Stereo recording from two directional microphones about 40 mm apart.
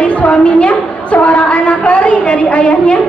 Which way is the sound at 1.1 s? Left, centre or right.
Left.